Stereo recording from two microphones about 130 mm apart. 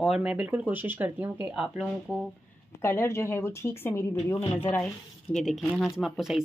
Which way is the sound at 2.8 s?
20° left (ahead or behind).